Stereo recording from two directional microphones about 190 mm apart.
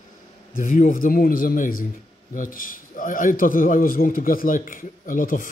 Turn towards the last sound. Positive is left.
turn(degrees=45)  # may be behind; listen again after turning